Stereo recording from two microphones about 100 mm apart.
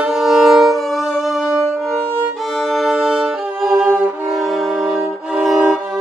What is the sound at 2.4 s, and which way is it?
Violin, centre (ahead or behind).